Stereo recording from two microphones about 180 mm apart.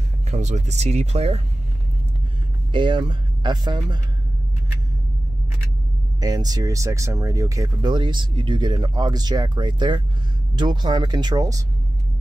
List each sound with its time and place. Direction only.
0.3 s speech: 40° right (ahead or behind)
2.7 s speech: 25° right (ahead or behind)
6.2 s speech: 20° right (ahead or behind)